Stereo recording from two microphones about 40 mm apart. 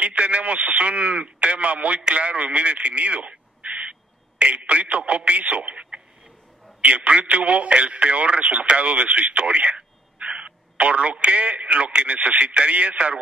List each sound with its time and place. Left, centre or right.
0.0 s a man's voice: right
6.8 s speech: right